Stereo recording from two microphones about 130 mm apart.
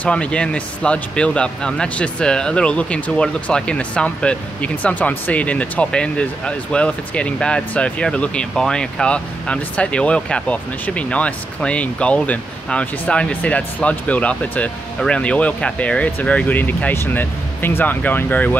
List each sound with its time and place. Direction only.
0.0 s speech: 10° left (ahead or behind)